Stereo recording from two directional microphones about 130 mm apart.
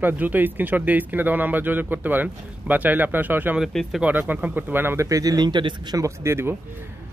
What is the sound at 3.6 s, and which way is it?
Speech, centre (ahead or behind).